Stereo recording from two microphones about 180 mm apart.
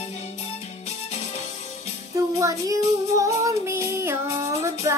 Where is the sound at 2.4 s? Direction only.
15° right (ahead or behind).